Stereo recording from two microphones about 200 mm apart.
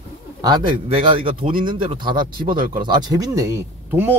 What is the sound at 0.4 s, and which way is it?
Speech, 20° right (ahead or behind).